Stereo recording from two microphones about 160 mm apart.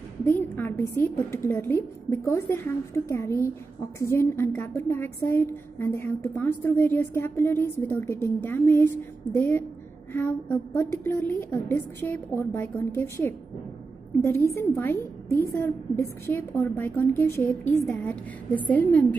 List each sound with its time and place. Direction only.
0.2 s a woman's voice: 10° left (ahead or behind)
14.6 s a woman's voice: 15° left (ahead or behind)